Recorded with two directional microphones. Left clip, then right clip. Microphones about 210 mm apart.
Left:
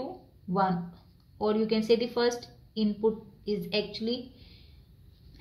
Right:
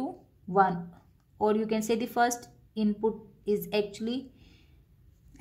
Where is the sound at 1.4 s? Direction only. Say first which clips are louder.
Even; 50° right (ahead or behind).